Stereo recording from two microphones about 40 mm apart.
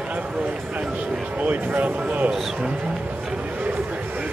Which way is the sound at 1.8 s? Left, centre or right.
Right.